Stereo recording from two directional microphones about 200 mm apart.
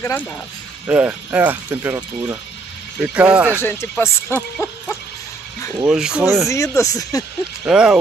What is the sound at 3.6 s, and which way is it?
Speech, 10° left (ahead or behind).